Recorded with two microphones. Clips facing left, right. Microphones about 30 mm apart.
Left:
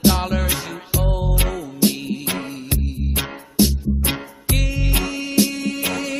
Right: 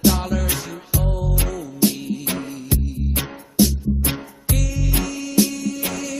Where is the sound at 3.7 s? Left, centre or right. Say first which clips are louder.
Left 1 dB; left.